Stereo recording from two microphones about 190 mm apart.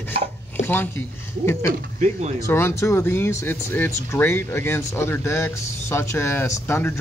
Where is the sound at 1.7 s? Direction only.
40° right (ahead or behind).